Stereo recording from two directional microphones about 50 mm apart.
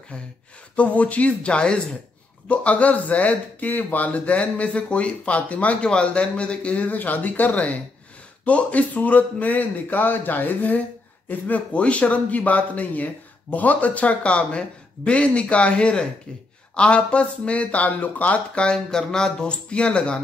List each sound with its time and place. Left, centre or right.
0.1 s speech: left
18.9 s speech: centre